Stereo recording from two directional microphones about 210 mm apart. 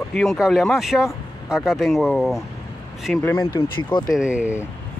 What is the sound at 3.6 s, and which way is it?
Speech, 20° left (ahead or behind).